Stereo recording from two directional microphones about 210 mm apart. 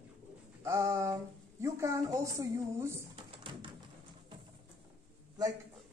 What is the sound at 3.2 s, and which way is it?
Tap, 25° right (ahead or behind).